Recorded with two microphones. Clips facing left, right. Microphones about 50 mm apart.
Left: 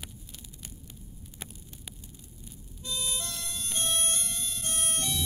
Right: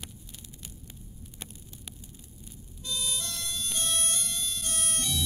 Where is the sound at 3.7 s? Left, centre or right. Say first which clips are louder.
Left 2 dB; left.